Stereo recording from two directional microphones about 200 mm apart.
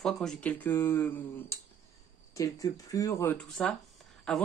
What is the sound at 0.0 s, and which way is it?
Speech, centre (ahead or behind).